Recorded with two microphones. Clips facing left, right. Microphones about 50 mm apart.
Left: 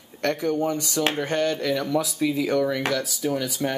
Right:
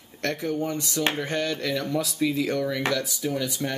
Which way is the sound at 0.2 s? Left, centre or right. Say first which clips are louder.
Left 4 dB; centre.